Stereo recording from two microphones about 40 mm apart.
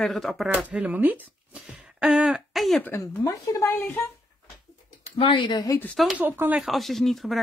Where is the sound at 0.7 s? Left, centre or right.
Right.